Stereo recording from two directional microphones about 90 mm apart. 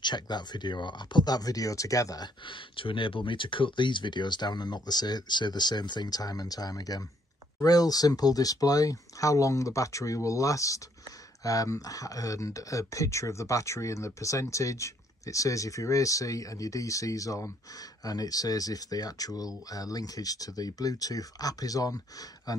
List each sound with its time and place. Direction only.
0.0 s speech: 55° left (ahead or behind); by 2.2 s 40° left (ahead or behind)
2.4 s speech: 70° left (ahead or behind); by 22.6 s 45° left (ahead or behind)